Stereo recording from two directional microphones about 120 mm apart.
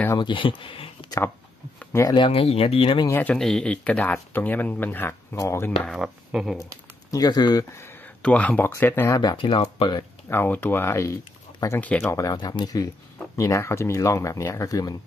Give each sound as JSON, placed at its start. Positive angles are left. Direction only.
{"t": 0.2, "sound": "speech", "side_deg": 45}
{"t": 1.9, "sound": "speech", "side_deg": 25}
{"t": 2.1, "sound": "speech", "side_deg": 50}
{"t": 3.1, "sound": "speech", "side_deg": 15}
{"t": 3.3, "sound": "speech", "side_deg": 5}
{"t": 5.9, "sound": "speech", "side_deg": -5}
{"t": 7.1, "sound": "speech", "side_deg": 35}
{"t": 8.2, "sound": "speech", "side_deg": 10}
{"t": 9.2, "sound": "speech", "side_deg": 40}
{"t": 10.3, "sound": "speech", "side_deg": 15}
{"t": 12.3, "sound": "speech", "side_deg": 35}